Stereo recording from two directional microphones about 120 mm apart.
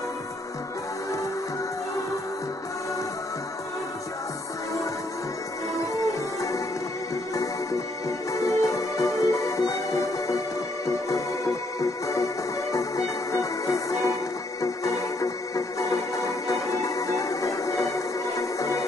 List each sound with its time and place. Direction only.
8.3 s music: 25° left (ahead or behind)